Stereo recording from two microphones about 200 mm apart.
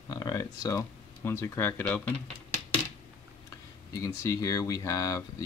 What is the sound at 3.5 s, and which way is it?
Speech, 15° left (ahead or behind).